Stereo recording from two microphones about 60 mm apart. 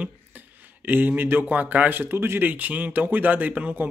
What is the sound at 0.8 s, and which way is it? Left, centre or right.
Speech, right.